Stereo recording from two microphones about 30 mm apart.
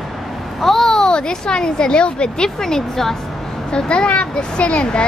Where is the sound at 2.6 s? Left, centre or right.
Centre.